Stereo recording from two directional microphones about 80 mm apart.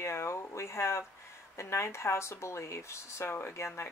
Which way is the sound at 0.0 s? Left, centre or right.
Left.